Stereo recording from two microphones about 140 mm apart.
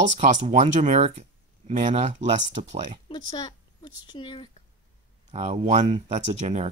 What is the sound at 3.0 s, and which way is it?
Speech, 30° left (ahead or behind).